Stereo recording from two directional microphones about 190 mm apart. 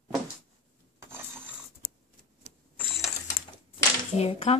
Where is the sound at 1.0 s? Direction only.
10° right (ahead or behind).